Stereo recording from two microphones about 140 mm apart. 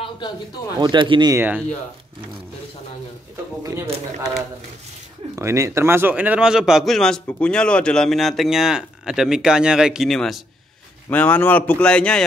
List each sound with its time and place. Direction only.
0.7 s speech: 35° right (ahead or behind)
1.3 s speech: 15° right (ahead or behind)
3.6 s speech: 20° right (ahead or behind)
5.3 s a man's voice: 20° right (ahead or behind); by 10.4 s centre (ahead or behind)
11.1 s a man's voice: 10° left (ahead or behind)